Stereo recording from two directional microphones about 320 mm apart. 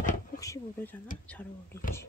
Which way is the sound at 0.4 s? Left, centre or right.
Centre.